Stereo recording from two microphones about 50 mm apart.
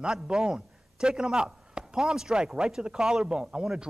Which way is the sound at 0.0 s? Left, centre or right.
Centre.